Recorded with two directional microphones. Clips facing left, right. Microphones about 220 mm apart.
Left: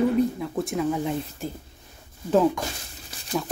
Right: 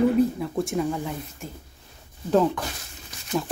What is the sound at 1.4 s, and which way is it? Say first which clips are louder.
Speech: left 6 dB; 35° left (ahead or behind).